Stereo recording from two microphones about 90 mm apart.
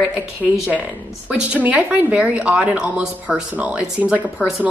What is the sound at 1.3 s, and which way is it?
Speech, 15° right (ahead or behind).